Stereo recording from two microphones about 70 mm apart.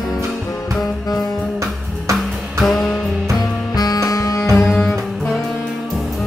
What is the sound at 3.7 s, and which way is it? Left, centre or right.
Music, left.